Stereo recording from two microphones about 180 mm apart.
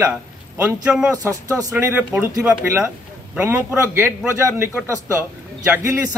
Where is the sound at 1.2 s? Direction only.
20° right (ahead or behind).